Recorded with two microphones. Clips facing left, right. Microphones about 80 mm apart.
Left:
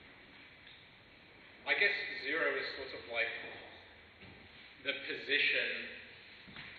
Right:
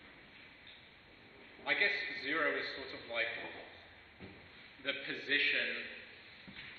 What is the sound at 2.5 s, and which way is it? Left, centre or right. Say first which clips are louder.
Speech: left 1 dB; centre.